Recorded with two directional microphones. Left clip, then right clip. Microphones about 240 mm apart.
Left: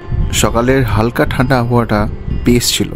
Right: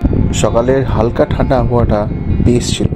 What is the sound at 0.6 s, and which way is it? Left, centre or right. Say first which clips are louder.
Speech: right 2 dB; left.